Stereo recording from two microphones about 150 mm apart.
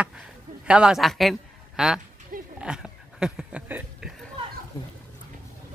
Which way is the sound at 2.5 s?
5° right (ahead or behind).